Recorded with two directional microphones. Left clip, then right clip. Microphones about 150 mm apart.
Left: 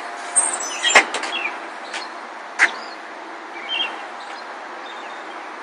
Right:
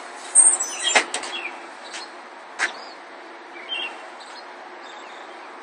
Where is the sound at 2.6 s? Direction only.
5° right (ahead or behind).